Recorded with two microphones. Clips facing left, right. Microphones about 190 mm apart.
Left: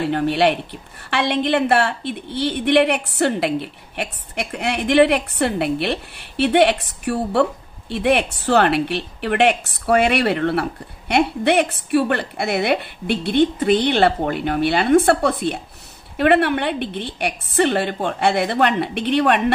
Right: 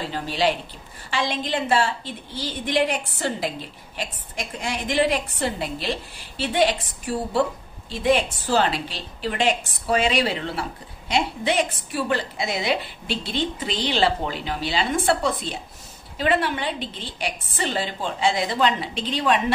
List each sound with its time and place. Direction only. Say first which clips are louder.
0.0 s a woman's voice: left 6 dB; 65° left (ahead or behind)